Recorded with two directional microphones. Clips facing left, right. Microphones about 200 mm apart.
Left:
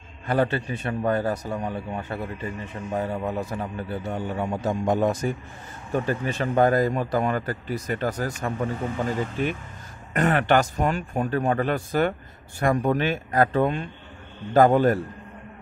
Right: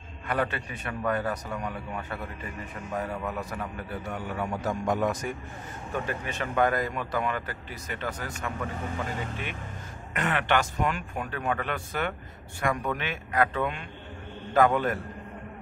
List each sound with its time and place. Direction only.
0.3 s a man's voice: 30° left (ahead or behind)